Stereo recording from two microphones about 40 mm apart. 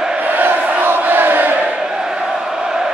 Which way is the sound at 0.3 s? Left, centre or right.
Right.